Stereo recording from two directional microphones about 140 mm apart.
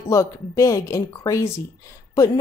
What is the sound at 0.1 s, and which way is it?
A woman's voice, 20° left (ahead or behind).